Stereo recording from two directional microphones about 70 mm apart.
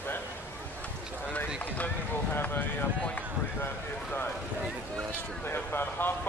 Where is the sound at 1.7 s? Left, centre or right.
Left.